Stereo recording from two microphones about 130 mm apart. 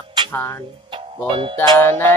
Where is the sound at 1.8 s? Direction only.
15° left (ahead or behind).